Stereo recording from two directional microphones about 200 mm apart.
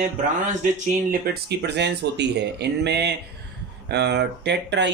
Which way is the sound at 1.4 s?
55° right (ahead or behind).